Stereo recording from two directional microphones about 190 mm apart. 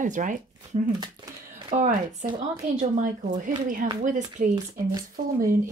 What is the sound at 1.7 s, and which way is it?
Speech, 40° right (ahead or behind).